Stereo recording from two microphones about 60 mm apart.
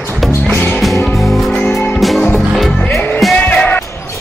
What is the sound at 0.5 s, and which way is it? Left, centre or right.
Music, left.